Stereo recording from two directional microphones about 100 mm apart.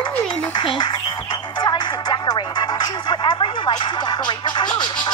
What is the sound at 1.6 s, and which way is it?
Music, 50° left (ahead or behind).